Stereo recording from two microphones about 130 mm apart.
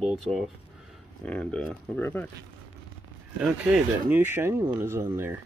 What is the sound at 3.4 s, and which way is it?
Speech, 10° right (ahead or behind).